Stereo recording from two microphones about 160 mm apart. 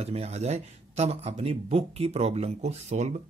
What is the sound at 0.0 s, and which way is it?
Speech, 40° right (ahead or behind).